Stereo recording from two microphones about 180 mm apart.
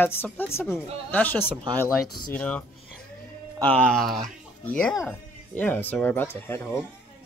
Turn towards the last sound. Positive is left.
turn(degrees=15)  # may be behind; listen again after turning